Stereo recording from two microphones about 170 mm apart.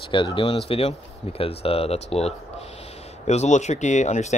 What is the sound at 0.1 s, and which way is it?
Speech, 30° left (ahead or behind).